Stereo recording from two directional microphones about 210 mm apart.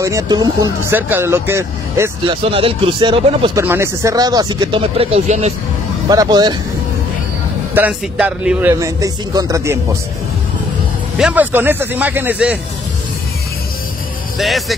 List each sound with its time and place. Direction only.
0.0 s speech: 15° right (ahead or behind)
2.5 s speech: 25° right (ahead or behind)
3.6 s speech: 10° right (ahead or behind); by 5.5 s 30° right (ahead or behind)
6.0 s speech: 20° right (ahead or behind)
7.7 s speech: 5° right (ahead or behind)
11.1 s speech: 5° right (ahead or behind)
14.4 s speech: centre (ahead or behind)